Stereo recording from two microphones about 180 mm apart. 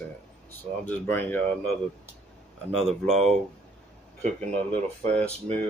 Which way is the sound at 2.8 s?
5° left (ahead or behind).